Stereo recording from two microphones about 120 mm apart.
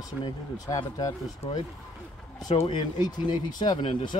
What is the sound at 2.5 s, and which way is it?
Speech, 60° left (ahead or behind).